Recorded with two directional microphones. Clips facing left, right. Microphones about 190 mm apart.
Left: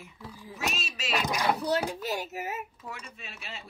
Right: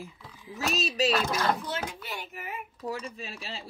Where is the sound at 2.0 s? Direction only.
40° left (ahead or behind).